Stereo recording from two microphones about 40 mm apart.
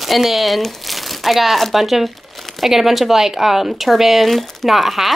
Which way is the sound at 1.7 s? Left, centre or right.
Centre.